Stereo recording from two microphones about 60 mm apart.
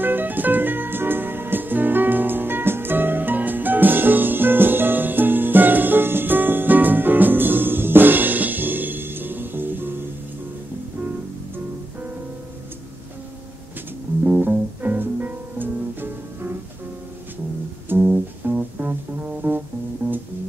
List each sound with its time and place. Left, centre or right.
0.0 s music: right
14.2 s music: right
17.8 s music: right